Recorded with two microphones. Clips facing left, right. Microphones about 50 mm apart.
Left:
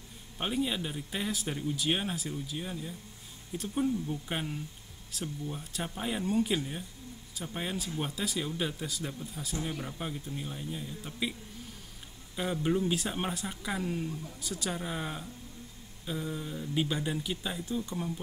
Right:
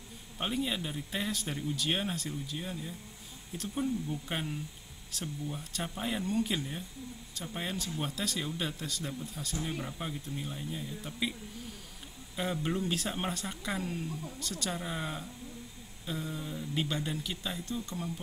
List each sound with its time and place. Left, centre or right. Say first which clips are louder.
0.4 s speech: left 2 dB; centre
12.4 s speech: left 3 dB; centre